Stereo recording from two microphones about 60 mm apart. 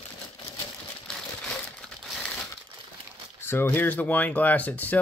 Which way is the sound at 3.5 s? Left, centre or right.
Left.